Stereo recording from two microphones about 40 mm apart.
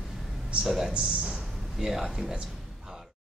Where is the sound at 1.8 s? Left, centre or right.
Centre.